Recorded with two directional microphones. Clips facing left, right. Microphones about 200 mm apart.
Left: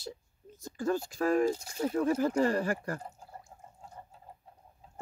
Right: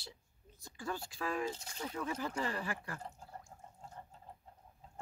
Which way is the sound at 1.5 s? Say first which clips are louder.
Left 8 dB; 10° left (ahead or behind).